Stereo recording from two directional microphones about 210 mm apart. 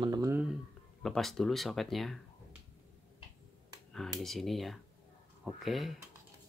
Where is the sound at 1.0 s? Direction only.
Centre (ahead or behind).